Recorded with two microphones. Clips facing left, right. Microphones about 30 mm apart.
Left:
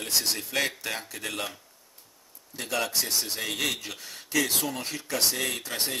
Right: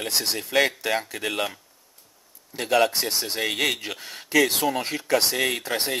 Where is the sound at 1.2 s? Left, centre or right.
Right.